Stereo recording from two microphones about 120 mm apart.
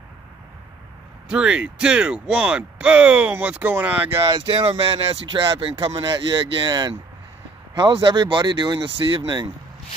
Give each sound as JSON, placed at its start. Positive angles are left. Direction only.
{"t": 1.3, "sound": "speech", "side_deg": -10}
{"t": 4.3, "sound": "speech", "side_deg": -45}